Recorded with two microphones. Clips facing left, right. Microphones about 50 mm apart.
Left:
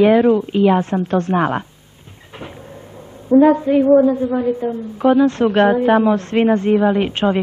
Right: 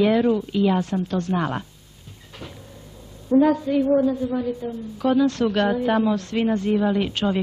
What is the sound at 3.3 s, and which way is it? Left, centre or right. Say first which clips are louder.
A woman's voice: left 6 dB; left.